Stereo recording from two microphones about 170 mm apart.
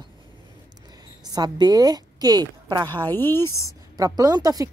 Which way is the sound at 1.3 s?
25° right (ahead or behind).